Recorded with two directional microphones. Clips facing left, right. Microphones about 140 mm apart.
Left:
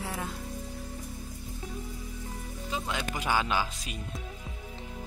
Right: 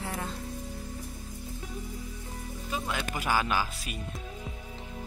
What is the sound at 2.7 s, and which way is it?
Speech, 15° left (ahead or behind).